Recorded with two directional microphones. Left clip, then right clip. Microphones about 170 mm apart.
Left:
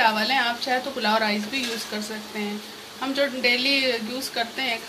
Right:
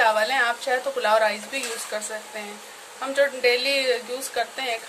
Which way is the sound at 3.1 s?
50° right (ahead or behind).